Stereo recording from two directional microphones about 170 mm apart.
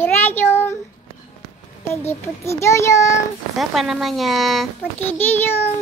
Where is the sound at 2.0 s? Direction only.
15° left (ahead or behind).